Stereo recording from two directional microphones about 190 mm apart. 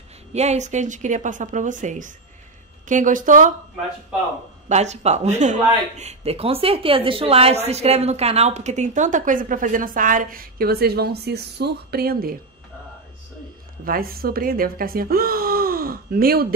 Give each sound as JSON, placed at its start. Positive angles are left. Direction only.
{"t": 0.3, "sound": "speech", "side_deg": -35}
{"t": 4.6, "sound": "speech", "side_deg": -35}
{"t": 13.8, "sound": "speech", "side_deg": -50}